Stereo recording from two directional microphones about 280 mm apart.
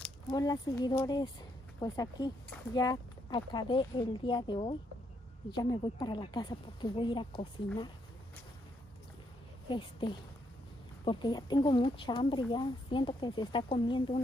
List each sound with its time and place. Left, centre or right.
0.0 s speech: centre
9.7 s speech: centre